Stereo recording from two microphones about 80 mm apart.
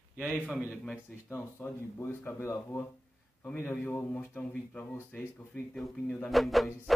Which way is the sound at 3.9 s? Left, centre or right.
Centre.